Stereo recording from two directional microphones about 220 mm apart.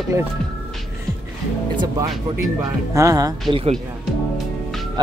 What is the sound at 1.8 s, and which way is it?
Speech, 15° right (ahead or behind).